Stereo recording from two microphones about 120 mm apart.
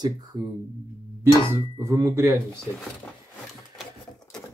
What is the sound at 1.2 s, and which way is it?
Speech, 20° right (ahead or behind).